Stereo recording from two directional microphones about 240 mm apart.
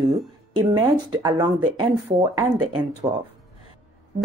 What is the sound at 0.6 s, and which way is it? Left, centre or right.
Speech, centre.